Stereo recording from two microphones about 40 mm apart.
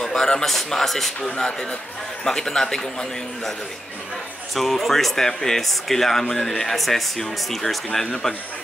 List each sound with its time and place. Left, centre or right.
0.0 s a sound: centre
0.5 s speech: centre
1.4 s speech: centre
4.6 s speech: centre